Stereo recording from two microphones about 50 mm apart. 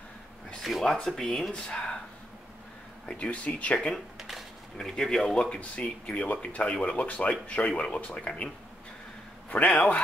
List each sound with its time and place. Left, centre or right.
0.6 s speech: centre
3.1 s speech: left
3.7 s speech: centre
4.2 s a sound: centre
4.7 s speech: centre
5.4 s speech: left
6.6 s speech: centre
7.0 s speech: left
9.5 s speech: left